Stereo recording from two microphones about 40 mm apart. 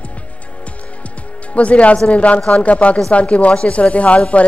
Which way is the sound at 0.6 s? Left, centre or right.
Left.